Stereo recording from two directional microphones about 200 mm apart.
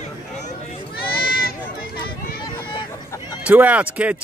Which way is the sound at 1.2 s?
50° left (ahead or behind).